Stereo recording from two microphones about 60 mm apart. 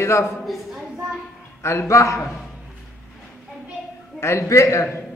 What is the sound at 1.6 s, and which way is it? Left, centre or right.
Speech, left.